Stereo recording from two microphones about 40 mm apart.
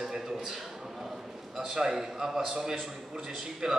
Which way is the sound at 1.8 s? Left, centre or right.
Centre.